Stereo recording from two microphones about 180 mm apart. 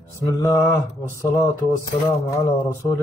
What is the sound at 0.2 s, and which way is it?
Speech, 15° left (ahead or behind).